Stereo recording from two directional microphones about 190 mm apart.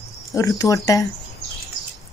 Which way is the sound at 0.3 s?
15° left (ahead or behind).